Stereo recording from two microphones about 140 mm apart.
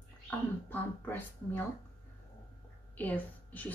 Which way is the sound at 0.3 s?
15° left (ahead or behind).